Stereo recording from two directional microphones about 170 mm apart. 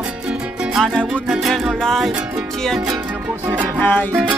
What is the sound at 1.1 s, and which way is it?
Music, 5° right (ahead or behind).